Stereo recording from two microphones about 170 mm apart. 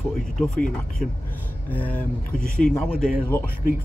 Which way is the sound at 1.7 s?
10° left (ahead or behind).